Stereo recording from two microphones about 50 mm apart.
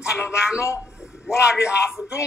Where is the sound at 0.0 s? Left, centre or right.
Centre.